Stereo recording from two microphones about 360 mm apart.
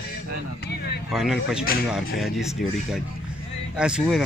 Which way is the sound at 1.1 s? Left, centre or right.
Centre.